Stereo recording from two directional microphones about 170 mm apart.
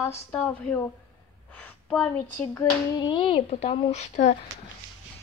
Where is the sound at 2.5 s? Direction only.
25° left (ahead or behind); by 4.3 s 40° left (ahead or behind).